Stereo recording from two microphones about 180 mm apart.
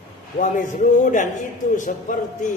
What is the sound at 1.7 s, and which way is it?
Speech, 45° left (ahead or behind).